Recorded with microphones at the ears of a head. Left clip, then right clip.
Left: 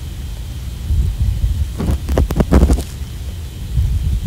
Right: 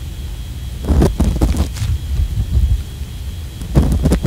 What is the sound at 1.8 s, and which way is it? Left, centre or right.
Throbbing, left.